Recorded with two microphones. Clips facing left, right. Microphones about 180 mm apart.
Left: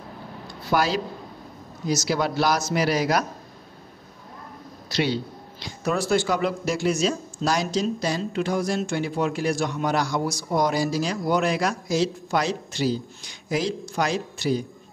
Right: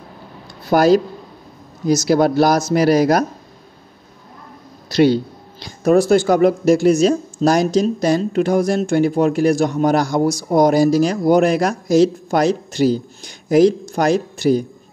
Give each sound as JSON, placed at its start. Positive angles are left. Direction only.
{"t": 0.7, "sound": "speech", "side_deg": -45}
{"t": 2.0, "sound": "speech", "side_deg": -45}
{"t": 4.8, "sound": "speech", "side_deg": -45}